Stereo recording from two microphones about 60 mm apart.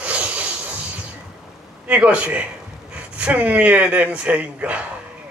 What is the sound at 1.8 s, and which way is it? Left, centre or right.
A man's voice, right.